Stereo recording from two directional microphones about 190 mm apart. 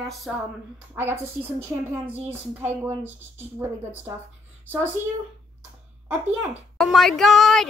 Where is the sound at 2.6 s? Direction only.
10° right (ahead or behind).